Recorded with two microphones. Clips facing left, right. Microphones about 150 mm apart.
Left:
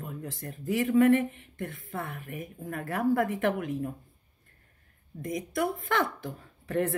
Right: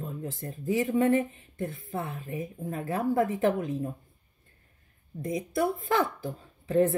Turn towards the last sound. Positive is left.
turn(degrees=-20)  # may be behind; listen again after turning